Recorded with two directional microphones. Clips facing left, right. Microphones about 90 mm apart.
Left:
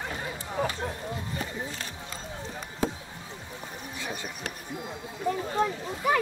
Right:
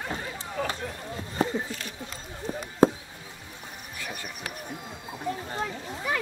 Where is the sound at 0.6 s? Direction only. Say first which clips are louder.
Left 1 dB; 20° left (ahead or behind).